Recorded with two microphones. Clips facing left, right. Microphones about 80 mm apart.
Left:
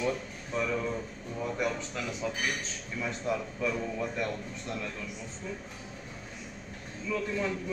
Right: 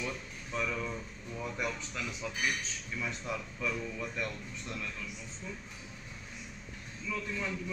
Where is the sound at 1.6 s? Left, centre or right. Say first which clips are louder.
Left 4 dB; left.